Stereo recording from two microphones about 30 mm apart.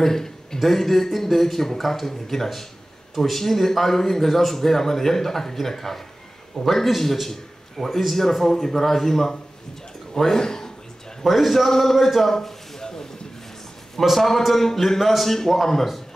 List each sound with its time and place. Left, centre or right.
0.0 s a man's voice: centre
0.6 s a man's voice: centre
11.2 s a man's voice: centre
12.3 s a sound: centre
14.0 s a man's voice: centre